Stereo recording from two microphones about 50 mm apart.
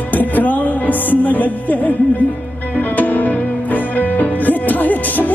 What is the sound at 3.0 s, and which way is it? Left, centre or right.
Music, left.